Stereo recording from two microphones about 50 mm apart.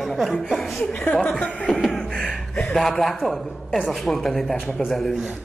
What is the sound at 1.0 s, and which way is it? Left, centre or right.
Speech, left.